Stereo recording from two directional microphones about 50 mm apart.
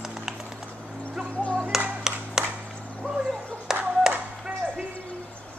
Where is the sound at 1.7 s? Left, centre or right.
Centre.